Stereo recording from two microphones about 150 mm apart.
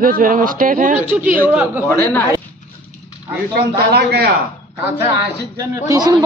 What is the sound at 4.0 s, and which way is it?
Speech, 90° right.